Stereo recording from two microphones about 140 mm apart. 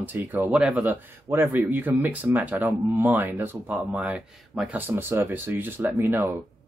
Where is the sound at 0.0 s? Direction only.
15° right (ahead or behind).